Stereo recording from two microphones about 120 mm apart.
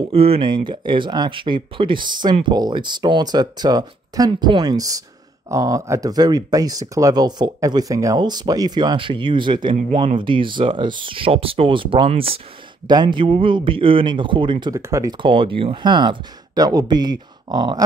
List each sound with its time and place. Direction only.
0.1 s speech: 55° right (ahead or behind)
12.8 s speech: 40° right (ahead or behind)
14.7 s speech: 25° right (ahead or behind)
15.1 s speech: 45° right (ahead or behind)